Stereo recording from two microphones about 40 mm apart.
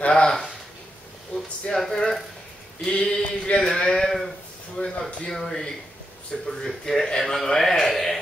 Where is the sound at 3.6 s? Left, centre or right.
Centre.